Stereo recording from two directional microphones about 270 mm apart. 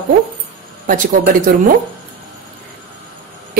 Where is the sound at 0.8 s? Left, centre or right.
Right.